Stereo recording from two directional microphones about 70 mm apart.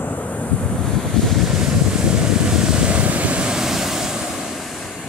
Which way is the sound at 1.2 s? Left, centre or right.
Centre.